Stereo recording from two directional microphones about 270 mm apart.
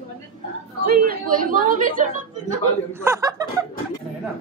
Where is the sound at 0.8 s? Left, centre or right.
Right.